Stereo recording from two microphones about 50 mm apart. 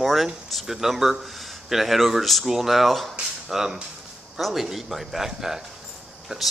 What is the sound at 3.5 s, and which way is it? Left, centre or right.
Speech, centre.